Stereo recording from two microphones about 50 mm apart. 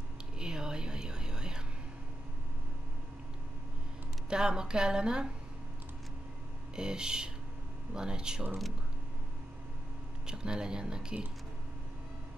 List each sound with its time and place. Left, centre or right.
0.4 s whispering: centre
4.3 s a woman's voice: centre
6.7 s a woman's voice: centre
10.2 s a woman's voice: centre